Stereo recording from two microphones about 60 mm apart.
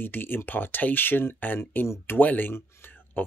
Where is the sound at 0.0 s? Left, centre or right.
Left.